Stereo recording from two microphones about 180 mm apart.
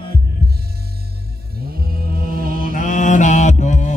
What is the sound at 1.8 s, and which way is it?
Music, 55° right (ahead or behind).